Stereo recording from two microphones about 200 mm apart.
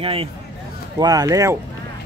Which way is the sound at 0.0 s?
30° right (ahead or behind).